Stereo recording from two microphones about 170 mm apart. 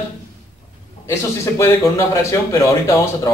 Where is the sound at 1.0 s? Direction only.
15° left (ahead or behind).